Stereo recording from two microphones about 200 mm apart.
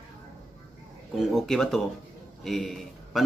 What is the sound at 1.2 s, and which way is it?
Speech, centre (ahead or behind).